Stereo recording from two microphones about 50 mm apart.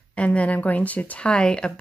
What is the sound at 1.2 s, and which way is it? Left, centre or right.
Speech, left.